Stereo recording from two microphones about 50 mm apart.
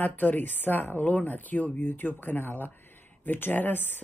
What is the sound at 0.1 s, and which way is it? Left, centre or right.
Speech, left.